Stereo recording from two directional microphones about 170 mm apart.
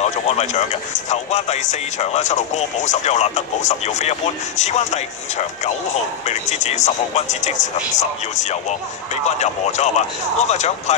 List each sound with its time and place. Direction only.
0.0 s speech: 40° left (ahead or behind)
6.2 s speech: 40° left (ahead or behind)